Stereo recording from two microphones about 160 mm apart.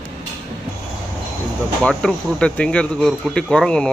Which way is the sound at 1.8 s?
5° left (ahead or behind).